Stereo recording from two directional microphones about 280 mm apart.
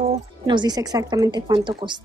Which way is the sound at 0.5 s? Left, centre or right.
Centre.